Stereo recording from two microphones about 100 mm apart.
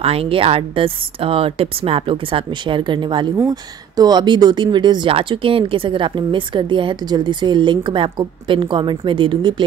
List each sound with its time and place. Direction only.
0.0 s speech: 75° right (ahead or behind); by 3.3 s 50° right (ahead or behind)
3.4 s speech: 40° right (ahead or behind); by 9.6 s 55° right (ahead or behind)